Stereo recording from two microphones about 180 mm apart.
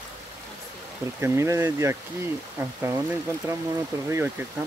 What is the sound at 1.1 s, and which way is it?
Speech, 15° right (ahead or behind).